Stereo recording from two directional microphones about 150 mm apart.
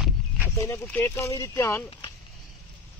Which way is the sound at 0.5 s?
20° left (ahead or behind).